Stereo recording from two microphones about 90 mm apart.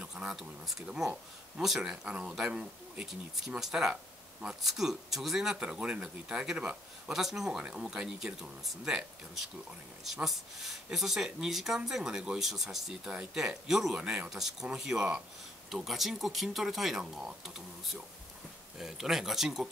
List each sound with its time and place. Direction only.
0.0 s speech: 10° right (ahead or behind)
18.8 s speech: 5° right (ahead or behind)